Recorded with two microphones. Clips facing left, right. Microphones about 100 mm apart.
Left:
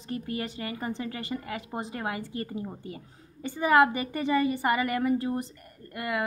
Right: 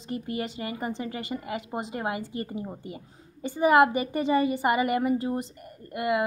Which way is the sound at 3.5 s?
20° right (ahead or behind).